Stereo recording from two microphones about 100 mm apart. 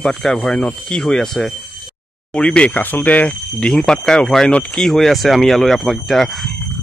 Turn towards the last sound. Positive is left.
turn(degrees=0)  # may be behind; listen again after turning